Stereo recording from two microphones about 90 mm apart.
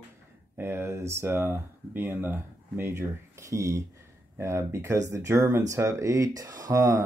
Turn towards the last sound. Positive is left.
turn(degrees=-35)  # may be behind; listen again after turning